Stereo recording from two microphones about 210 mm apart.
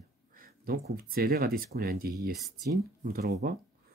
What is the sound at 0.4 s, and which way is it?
Speech, 45° right (ahead or behind).